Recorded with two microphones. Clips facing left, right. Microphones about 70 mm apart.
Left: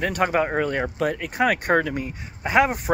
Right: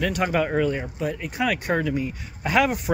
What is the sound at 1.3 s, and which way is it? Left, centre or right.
Speech, left.